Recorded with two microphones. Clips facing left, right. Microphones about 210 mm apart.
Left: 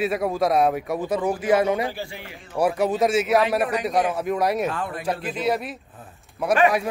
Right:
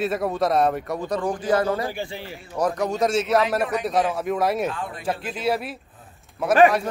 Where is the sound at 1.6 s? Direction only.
20° left (ahead or behind).